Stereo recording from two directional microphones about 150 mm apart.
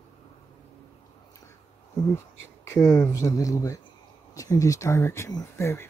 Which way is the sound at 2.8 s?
20° left (ahead or behind).